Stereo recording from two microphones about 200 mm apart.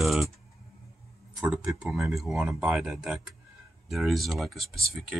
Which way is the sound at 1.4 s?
Centre (ahead or behind).